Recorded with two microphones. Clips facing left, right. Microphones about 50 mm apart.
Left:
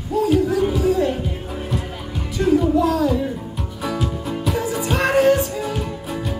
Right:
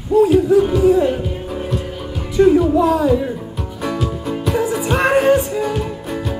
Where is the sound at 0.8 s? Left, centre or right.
Centre.